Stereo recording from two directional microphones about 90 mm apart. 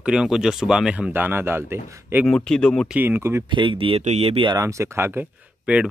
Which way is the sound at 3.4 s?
65° right (ahead or behind).